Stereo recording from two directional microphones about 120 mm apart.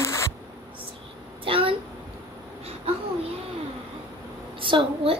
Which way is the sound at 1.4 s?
50° right (ahead or behind).